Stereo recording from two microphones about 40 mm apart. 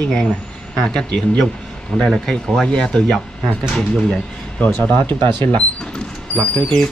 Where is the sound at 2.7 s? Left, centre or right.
Centre.